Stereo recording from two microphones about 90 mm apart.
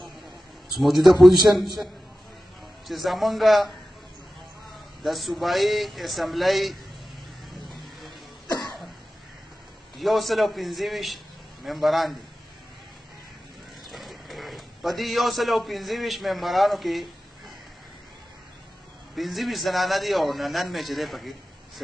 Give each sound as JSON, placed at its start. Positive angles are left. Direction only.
{"t": 0.7, "sound": "a man's voice", "side_deg": 0}
{"t": 2.9, "sound": "a man's voice", "side_deg": 0}
{"t": 5.0, "sound": "a man's voice", "side_deg": 0}
{"t": 8.5, "sound": "cough", "side_deg": 50}
{"t": 9.9, "sound": "a man's voice", "side_deg": 0}
{"t": 13.8, "sound": "a man's voice", "side_deg": 0}
{"t": 19.1, "sound": "a man's voice", "side_deg": 0}